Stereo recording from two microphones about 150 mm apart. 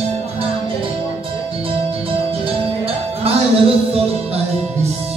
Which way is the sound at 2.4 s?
40° right (ahead or behind).